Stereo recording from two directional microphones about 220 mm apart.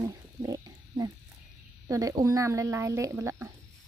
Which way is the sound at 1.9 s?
15° right (ahead or behind).